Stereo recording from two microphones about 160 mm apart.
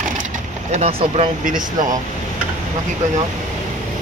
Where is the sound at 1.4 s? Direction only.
55° right (ahead or behind).